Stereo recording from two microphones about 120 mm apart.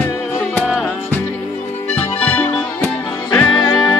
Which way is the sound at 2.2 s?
10° left (ahead or behind).